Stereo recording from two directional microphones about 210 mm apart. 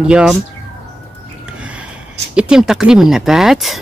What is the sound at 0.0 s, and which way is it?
Speech, 5° right (ahead or behind).